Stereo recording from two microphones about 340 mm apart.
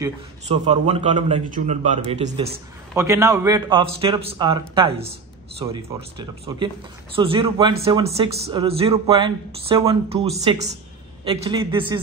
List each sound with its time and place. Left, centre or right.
0.0 s a man's voice: centre